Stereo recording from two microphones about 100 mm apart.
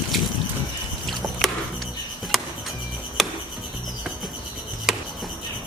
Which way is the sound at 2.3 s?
Centre (ahead or behind).